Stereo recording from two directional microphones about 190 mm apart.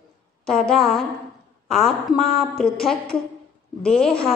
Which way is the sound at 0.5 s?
Centre (ahead or behind).